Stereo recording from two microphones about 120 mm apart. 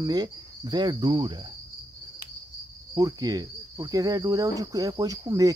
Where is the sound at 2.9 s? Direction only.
30° right (ahead or behind).